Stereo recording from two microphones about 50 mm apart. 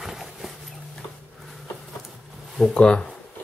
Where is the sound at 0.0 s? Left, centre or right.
Centre.